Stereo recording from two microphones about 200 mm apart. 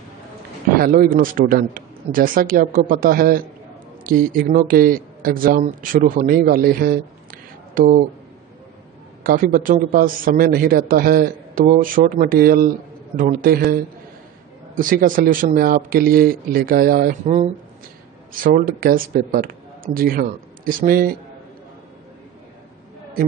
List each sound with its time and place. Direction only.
0.7 s a man's voice: 45° right (ahead or behind)
9.2 s a man's voice: 45° right (ahead or behind)
14.8 s a man's voice: 45° right (ahead or behind)